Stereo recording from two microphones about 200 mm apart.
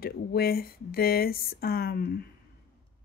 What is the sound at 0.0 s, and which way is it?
Speech, 50° left (ahead or behind).